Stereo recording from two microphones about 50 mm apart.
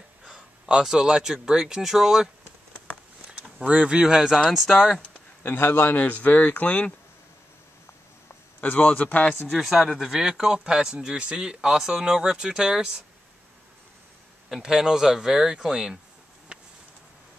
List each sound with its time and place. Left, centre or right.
0.2 s speech: centre
3.6 s speech: right
4.5 s speech: centre
5.4 s a man's voice: left
5.9 s speech: left
8.5 s a man's voice: left
9.6 s speech: centre
14.6 s speech: centre